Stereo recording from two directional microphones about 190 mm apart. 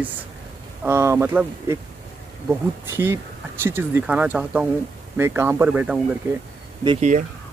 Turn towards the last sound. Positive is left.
turn(degrees=-40)  # may be behind; listen again after turning